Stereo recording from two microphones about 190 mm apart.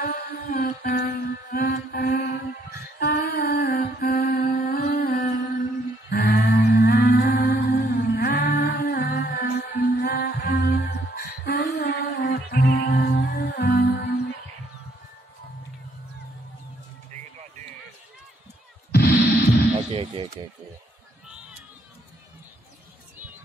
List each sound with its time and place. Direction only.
0.0 s music: 50° left (ahead or behind)
3.0 s mantra: 55° left (ahead or behind)
4.6 s carnatic music: 55° left (ahead or behind)
6.0 s humming: 55° left (ahead or behind)
18.9 s a sound: 55° left (ahead or behind)
19.9 s a sound: 25° right (ahead or behind)